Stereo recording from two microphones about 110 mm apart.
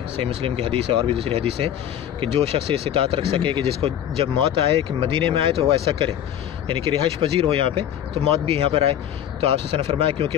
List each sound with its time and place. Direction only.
0.2 s speech: 55° right (ahead or behind)
7.2 s speech: 60° right (ahead or behind)